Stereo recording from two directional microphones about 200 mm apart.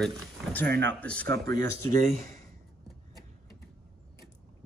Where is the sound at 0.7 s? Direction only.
60° right (ahead or behind).